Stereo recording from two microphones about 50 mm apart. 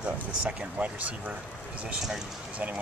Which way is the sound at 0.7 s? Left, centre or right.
Right.